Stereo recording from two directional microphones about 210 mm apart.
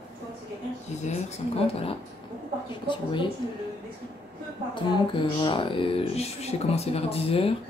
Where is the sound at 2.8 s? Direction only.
25° left (ahead or behind).